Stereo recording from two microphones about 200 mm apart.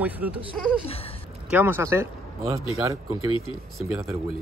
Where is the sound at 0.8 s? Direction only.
30° left (ahead or behind).